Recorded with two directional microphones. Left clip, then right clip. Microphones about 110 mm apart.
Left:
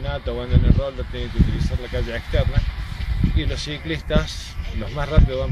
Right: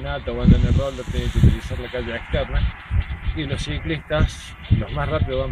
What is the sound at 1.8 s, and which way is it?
Speech, 45° left (ahead or behind).